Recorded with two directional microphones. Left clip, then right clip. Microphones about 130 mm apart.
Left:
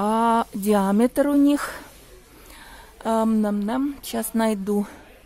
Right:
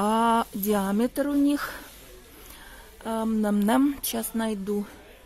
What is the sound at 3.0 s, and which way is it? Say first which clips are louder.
Speech: left 7 dB; 25° left (ahead or behind).